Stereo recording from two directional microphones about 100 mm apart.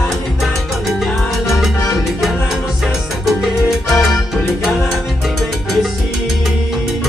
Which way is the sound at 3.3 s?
Centre (ahead or behind).